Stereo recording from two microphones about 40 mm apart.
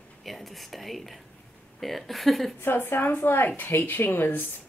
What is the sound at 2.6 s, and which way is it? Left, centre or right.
Speech, left.